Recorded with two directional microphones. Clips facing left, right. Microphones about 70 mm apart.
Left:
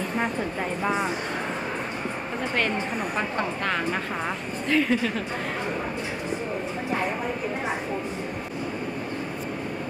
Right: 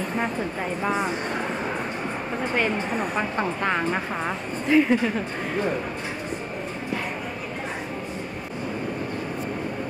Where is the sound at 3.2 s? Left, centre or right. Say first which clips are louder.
Right 2 dB; centre.